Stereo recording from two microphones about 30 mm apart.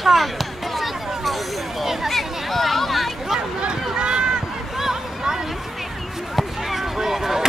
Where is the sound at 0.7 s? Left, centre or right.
Centre.